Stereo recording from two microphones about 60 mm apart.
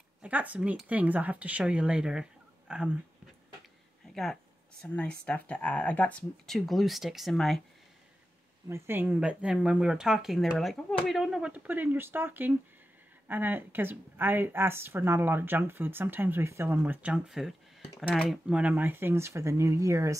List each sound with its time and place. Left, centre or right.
0.2 s speech: right
4.1 s speech: centre
4.8 s speech: centre
6.4 s speech: centre
8.6 s speech: right
9.0 s speech: centre
11.4 s speech: right
16.8 s speech: right
17.1 s speech: centre
18.5 s speech: centre
18.8 s speech: right